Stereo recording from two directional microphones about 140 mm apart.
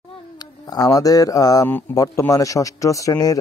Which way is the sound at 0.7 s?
25° left (ahead or behind).